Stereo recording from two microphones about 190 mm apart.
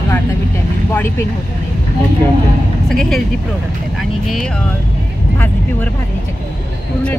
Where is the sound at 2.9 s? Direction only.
Centre (ahead or behind).